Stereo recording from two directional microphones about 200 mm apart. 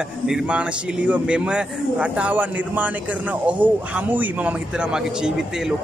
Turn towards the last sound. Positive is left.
turn(degrees=-5)  # may be behind; listen again after turning